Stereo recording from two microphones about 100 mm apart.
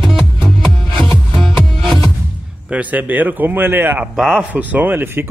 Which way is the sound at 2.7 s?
15° right (ahead or behind).